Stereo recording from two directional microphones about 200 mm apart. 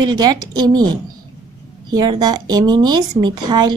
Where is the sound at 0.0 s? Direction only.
20° right (ahead or behind).